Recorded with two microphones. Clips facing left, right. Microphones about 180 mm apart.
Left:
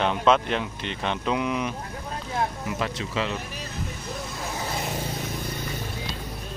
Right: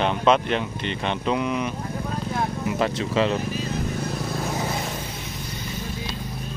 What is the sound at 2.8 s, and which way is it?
Speech, 35° right (ahead or behind).